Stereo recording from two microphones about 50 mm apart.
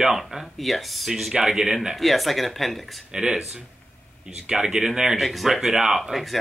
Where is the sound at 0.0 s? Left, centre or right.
Centre.